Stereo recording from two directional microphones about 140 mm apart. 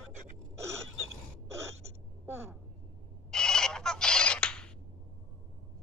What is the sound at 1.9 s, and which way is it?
Gasp, 20° right (ahead or behind).